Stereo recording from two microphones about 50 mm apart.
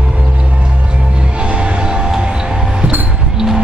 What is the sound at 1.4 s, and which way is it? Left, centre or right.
Music, right.